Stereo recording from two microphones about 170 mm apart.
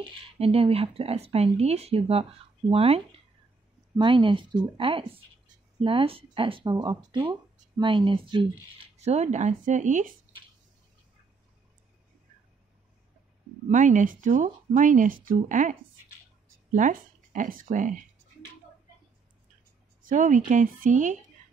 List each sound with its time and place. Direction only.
0.0 s speech: 35° right (ahead or behind)
8.9 s speech: 40° right (ahead or behind)
13.7 s speech: 45° right (ahead or behind)
20.0 s speech: 50° right (ahead or behind)